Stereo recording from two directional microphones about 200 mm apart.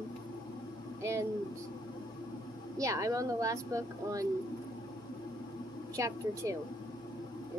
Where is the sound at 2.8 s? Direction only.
15° right (ahead or behind).